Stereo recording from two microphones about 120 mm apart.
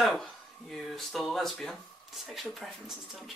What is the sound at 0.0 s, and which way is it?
Speech, 5° left (ahead or behind).